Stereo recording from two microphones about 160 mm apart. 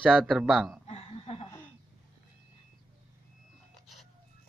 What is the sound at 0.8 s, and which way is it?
Chuckle, 40° left (ahead or behind).